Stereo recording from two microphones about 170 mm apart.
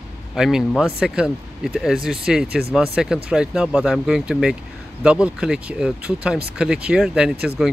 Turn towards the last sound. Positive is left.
turn(degrees=0)  # may be behind; listen again after turning